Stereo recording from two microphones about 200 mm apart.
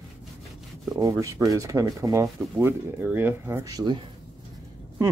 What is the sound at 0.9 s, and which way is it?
Speech, 15° right (ahead or behind).